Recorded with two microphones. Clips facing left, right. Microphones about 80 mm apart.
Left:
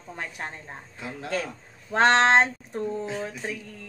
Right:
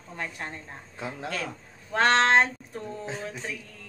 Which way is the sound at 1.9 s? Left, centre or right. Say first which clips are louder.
Left 2 dB; left.